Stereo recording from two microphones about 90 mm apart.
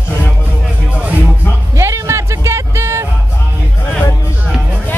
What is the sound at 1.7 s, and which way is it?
Music, 35° right (ahead or behind).